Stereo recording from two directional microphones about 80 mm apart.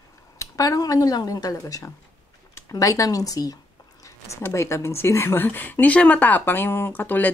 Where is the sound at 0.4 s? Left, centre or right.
Left.